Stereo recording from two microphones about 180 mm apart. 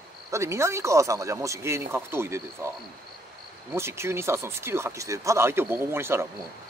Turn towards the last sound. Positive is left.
turn(degrees=-15)  # may be behind; listen again after turning